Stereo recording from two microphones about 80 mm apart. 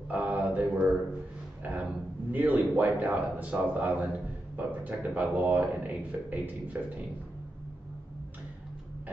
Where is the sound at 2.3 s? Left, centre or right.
Right.